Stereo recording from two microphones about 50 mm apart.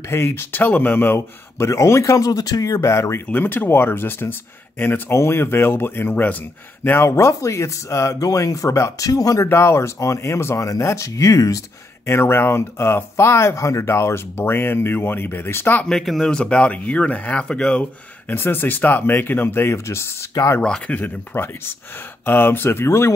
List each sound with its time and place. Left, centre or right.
0.1 s speech: left
0.5 s speech: left
1.6 s speech: left
3.3 s speech: left
5.1 s speech: left
7.1 s speech: left
9.5 s speech: left
12.1 s speech: left
15.9 s speech: centre
16.3 s speech: left
17.5 s speech: centre
18.3 s speech: left
20.9 s speech: left